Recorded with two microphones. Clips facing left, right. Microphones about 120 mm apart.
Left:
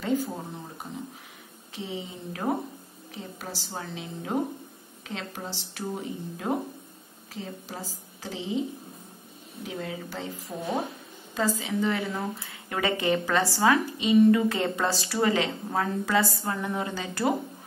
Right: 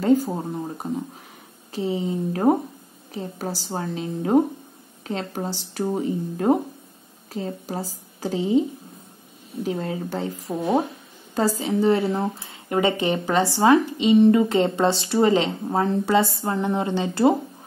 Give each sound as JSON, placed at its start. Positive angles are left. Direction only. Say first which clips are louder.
{"t": 0.0, "sound": "a woman's voice", "louder": "right 9 dB", "side_deg": -40}
{"t": 1.7, "sound": "a woman's voice", "louder": "right 11 dB", "side_deg": -40}
{"t": 9.7, "sound": "a woman's voice", "louder": "right 8 dB", "side_deg": -40}